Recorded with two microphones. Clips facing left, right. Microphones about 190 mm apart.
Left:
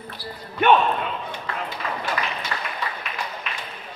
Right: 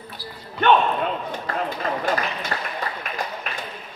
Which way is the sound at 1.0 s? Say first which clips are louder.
Right 4 dB; 45° right (ahead or behind).